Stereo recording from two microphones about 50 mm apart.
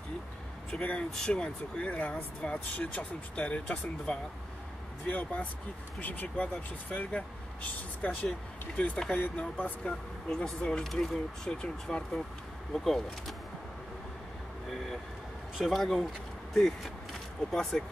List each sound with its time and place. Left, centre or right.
0.7 s speech: left
5.0 s speech: left
9.2 s speech: left
9.8 s speech: centre
15.5 s speech: centre